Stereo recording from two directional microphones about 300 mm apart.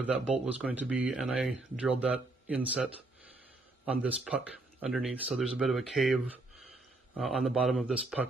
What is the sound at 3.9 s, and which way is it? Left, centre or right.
Speech, centre.